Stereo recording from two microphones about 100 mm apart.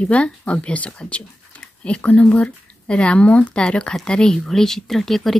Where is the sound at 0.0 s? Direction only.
15° left (ahead or behind).